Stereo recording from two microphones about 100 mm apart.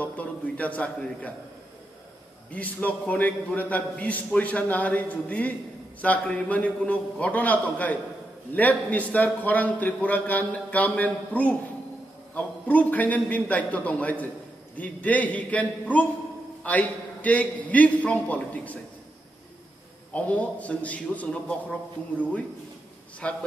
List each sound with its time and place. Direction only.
0.0 s a man's voice: 15° left (ahead or behind)
2.5 s a man's voice: 15° left (ahead or behind)
20.2 s a man's voice: 15° left (ahead or behind)
23.2 s a man's voice: 10° left (ahead or behind)